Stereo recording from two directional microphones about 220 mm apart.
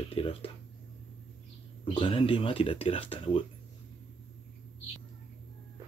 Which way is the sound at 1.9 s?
25° left (ahead or behind).